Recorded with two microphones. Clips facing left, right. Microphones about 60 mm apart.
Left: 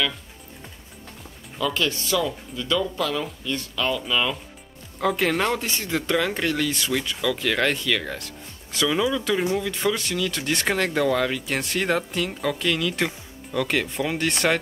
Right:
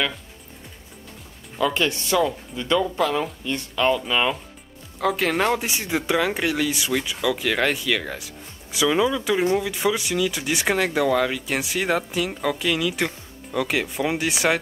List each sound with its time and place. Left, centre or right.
1.6 s speech: right
5.0 s speech: centre